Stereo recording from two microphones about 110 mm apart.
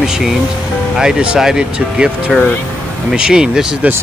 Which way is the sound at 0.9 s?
5° right (ahead or behind).